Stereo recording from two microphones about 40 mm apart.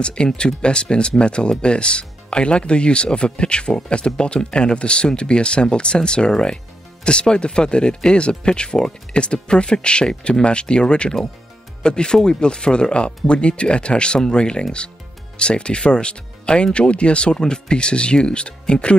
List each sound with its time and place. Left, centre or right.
0.0 s speech: left